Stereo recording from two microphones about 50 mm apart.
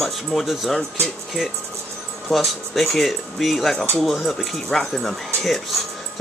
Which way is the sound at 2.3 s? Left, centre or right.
Centre.